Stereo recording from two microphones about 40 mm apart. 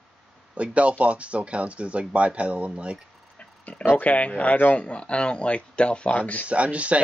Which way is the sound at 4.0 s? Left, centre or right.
Left.